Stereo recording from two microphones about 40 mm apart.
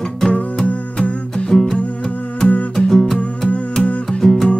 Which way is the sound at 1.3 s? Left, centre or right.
Centre.